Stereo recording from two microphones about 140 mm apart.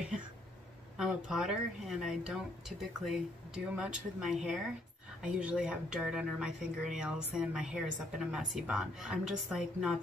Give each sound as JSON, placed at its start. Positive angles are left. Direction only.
{"t": 0.9, "sound": "speech", "side_deg": -5}